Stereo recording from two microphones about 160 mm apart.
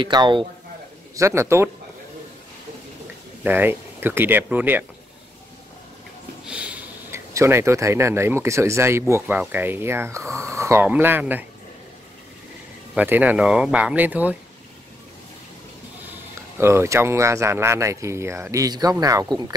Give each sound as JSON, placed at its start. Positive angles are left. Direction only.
{"t": 0.0, "sound": "speech", "side_deg": -30}
{"t": 1.1, "sound": "speech", "side_deg": -20}
{"t": 3.4, "sound": "speech", "side_deg": -10}
{"t": 6.4, "sound": "a sound", "side_deg": -10}
{"t": 7.3, "sound": "speech", "side_deg": -15}
{"t": 12.9, "sound": "speech", "side_deg": -10}
{"t": 16.1, "sound": "speech", "side_deg": -15}